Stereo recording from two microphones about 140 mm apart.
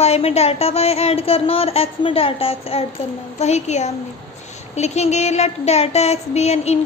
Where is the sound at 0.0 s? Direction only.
50° left (ahead or behind).